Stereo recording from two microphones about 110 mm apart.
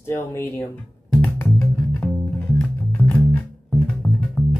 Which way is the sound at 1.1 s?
15° left (ahead or behind).